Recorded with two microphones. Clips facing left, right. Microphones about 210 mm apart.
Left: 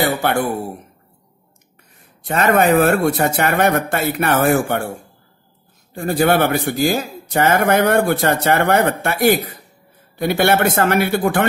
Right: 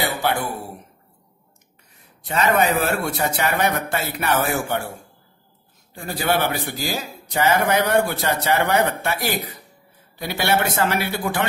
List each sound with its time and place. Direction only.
0.0 s throat clearing: 50° left (ahead or behind)
2.2 s a man's voice: 50° left (ahead or behind)
5.9 s a man's voice: 50° left (ahead or behind)